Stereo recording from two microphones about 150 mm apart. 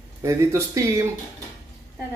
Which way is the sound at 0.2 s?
20° right (ahead or behind).